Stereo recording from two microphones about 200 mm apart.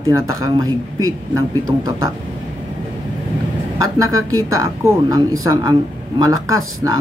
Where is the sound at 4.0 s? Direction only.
15° right (ahead or behind).